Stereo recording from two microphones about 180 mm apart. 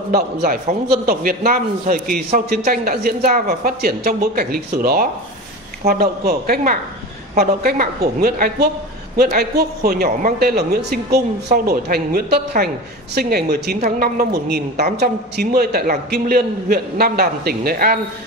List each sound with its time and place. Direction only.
0.1 s a man's voice: 55° right (ahead or behind)